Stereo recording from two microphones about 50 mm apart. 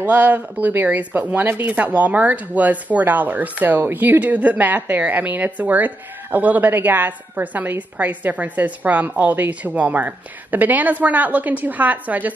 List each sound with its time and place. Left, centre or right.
0.0 s a woman's voice: right